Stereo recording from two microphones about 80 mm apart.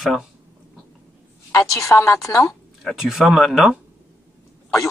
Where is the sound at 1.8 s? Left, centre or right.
Left.